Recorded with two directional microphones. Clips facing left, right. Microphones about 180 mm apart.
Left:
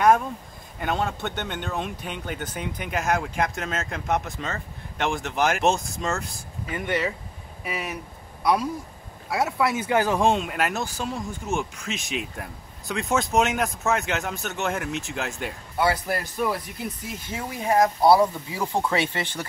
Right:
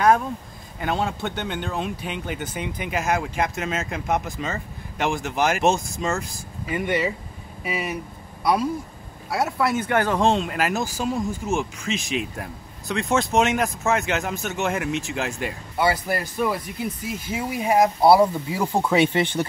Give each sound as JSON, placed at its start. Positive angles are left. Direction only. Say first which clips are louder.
{"t": 0.7, "sound": "speech", "louder": "right 1 dB", "side_deg": -5}
{"t": 1.6, "sound": "speech", "louder": "right 2 dB", "side_deg": 0}
{"t": 9.3, "sound": "speech", "louder": "right 1 dB", "side_deg": 5}